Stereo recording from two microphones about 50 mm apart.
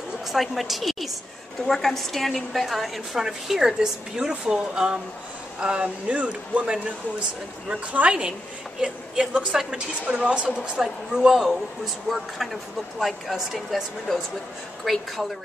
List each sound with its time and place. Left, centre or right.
0.3 s a woman's voice: centre
10.0 s a woman's voice: right; by 13.8 s centre
14.8 s a woman's voice: centre